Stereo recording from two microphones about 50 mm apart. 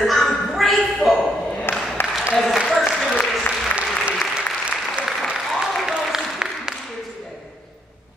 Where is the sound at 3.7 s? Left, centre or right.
Left.